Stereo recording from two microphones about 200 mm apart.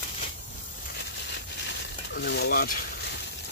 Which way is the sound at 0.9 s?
60° left (ahead or behind).